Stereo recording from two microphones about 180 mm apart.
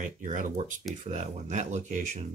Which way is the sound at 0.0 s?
45° right (ahead or behind).